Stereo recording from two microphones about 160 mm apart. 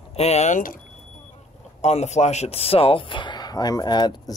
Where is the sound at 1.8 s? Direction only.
45° left (ahead or behind).